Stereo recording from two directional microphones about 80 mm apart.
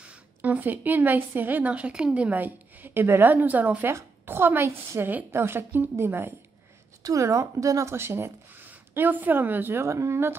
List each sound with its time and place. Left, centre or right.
0.1 s speech: right
7.0 s speech: right
7.9 s speech: right